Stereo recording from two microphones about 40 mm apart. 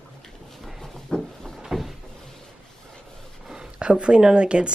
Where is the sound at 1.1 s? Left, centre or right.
Left.